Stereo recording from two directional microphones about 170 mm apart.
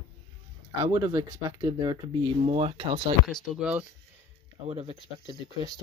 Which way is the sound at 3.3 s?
Centre (ahead or behind).